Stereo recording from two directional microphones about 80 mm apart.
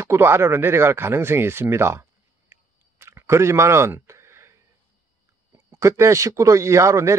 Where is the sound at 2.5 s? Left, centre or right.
Right.